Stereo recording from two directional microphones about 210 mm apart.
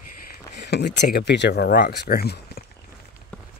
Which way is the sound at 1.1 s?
55° left (ahead or behind).